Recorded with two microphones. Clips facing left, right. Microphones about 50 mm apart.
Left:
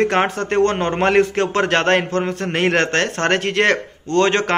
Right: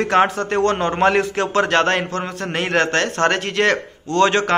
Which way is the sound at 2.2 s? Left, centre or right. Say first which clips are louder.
Left 3 dB; left.